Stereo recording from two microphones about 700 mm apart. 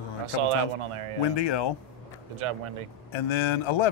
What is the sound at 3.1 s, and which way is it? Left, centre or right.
Speech, left.